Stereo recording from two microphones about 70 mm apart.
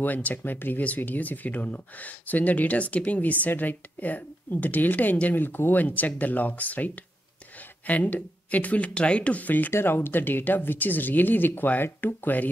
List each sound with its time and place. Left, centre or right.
0.0 s speech: left